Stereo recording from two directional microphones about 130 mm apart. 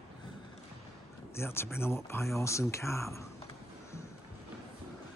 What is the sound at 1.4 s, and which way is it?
Speech, 20° left (ahead or behind).